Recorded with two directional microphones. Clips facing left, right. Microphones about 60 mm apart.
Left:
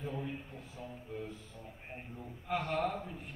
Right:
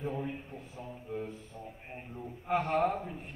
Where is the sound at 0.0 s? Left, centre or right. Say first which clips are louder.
Right 4 dB; right.